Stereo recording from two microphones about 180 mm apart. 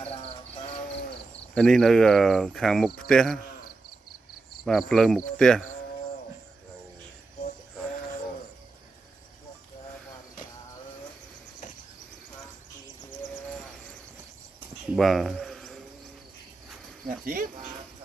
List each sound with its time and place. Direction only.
0.0 s music: 35° left (ahead or behind)
1.5 s speech: 5° left (ahead or behind)
4.6 s speech: centre (ahead or behind)
14.9 s bird: centre (ahead or behind)
17.2 s speech: 50° right (ahead or behind)